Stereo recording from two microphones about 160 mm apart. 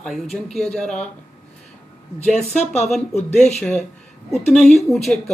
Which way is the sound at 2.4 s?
45° left (ahead or behind).